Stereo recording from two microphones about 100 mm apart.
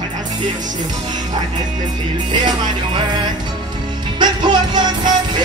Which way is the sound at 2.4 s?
45° right (ahead or behind).